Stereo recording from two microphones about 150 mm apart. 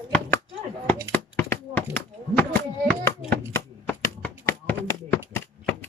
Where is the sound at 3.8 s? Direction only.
10° left (ahead or behind).